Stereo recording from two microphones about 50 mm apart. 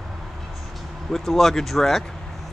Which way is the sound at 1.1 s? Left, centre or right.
Centre.